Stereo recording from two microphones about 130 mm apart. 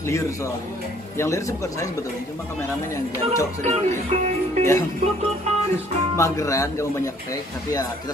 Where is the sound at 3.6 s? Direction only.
55° right (ahead or behind).